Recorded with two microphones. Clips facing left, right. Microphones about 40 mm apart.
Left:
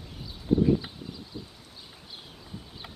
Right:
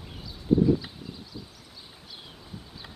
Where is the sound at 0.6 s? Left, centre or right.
Centre.